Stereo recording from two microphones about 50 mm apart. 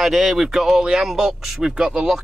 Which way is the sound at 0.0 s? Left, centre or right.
Centre.